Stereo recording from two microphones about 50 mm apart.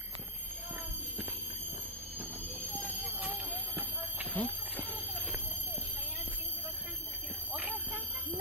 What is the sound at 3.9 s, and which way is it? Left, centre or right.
Horse, right.